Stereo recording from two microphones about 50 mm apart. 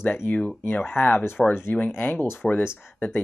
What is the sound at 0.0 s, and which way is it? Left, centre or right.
Speech, left.